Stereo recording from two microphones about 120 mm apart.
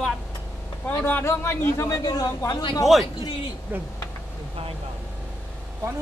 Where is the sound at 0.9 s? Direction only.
20° left (ahead or behind); by 3.5 s 45° left (ahead or behind).